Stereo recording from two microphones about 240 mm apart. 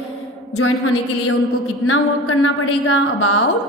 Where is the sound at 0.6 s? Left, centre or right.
Left.